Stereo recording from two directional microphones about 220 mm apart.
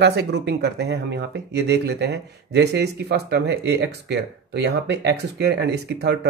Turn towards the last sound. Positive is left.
turn(degrees=-50)  # may be behind; listen again after turning